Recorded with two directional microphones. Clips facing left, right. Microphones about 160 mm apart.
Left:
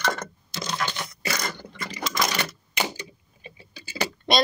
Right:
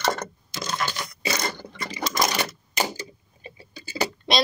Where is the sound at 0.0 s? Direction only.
35° right (ahead or behind).